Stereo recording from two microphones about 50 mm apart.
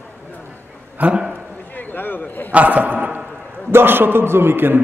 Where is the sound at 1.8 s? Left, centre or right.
Left.